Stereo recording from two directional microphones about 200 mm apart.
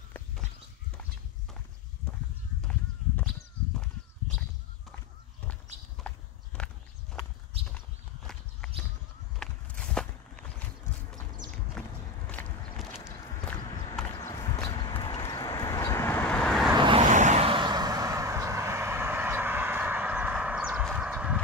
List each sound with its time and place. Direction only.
2.6 s a sound: 5° left (ahead or behind)
5.5 s walk: 5° left (ahead or behind)
7.6 s horse: 5° left (ahead or behind)
9.4 s walk: 5° left (ahead or behind)
11.8 s walk: 5° left (ahead or behind)
12.3 s a sound: 10° left (ahead or behind)
13.5 s horse: 5° left (ahead or behind)
14.9 s vehicle: 20° left (ahead or behind); by 16.7 s centre (ahead or behind)
16.7 s vehicle: 25° right (ahead or behind)
17.0 s vehicle: 40° right (ahead or behind); by 21.4 s 5° right (ahead or behind)